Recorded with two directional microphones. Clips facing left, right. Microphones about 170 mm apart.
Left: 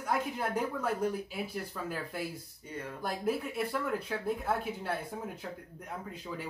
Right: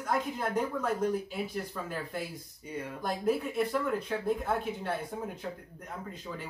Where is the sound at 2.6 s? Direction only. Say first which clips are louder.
Right 4 dB; 15° right (ahead or behind).